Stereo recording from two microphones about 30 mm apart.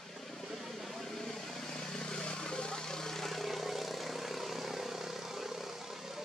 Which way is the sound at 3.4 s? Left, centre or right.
Centre.